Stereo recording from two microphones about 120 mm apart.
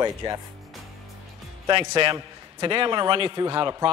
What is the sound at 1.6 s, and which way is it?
A man's voice, 40° right (ahead or behind).